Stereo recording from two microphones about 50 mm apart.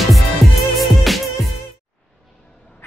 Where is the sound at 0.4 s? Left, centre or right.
Centre.